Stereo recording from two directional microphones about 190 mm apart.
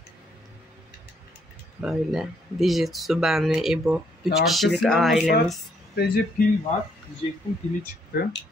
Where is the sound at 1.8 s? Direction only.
Centre (ahead or behind).